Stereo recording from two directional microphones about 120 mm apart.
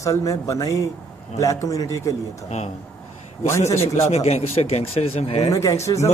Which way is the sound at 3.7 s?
25° left (ahead or behind).